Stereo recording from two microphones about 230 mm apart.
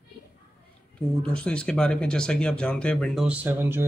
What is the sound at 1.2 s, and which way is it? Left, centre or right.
Speech, centre.